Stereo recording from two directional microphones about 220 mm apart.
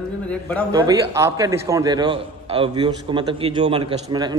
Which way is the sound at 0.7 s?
15° right (ahead or behind).